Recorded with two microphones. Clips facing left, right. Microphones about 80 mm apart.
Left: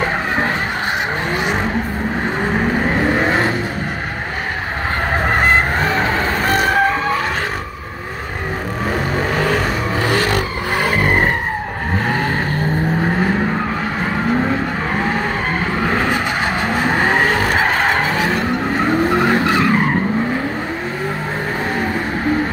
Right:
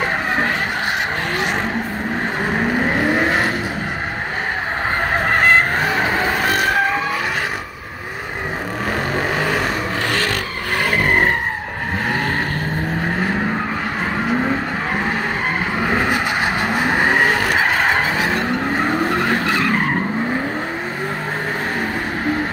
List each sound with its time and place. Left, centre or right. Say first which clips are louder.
3.0 s vehicle: left 2 dB; centre
5.3 s vehicle: right 1 dB; centre
5.9 s vehicle: left 1 dB; centre
6.5 s vehicle: left 6 dB; centre
10.0 s vehicle: left 6 dB; centre
10.8 s vehicle: even; centre
15.9 s vehicle: right 1 dB; centre